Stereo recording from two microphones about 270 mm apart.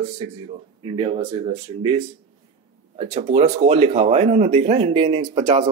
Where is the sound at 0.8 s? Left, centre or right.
Centre.